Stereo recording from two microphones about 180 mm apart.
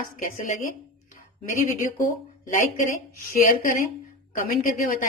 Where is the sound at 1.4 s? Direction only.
50° left (ahead or behind).